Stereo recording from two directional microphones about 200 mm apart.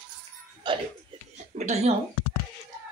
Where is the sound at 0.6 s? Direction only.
25° right (ahead or behind).